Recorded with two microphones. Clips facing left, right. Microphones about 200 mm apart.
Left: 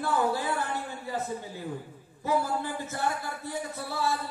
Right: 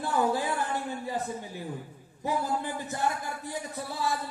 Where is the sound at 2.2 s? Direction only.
15° right (ahead or behind).